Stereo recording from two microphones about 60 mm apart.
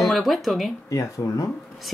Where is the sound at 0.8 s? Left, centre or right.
Left.